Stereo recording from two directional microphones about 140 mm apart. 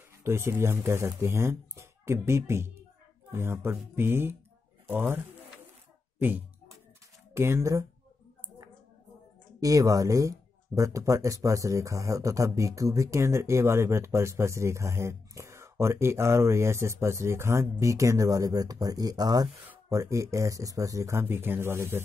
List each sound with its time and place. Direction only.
0.2 s speech: 20° right (ahead or behind)
9.6 s speech: 25° right (ahead or behind)